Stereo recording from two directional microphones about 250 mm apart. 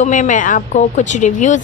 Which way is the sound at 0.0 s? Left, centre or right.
Left.